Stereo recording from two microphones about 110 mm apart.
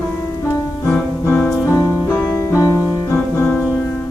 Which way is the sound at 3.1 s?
15° left (ahead or behind).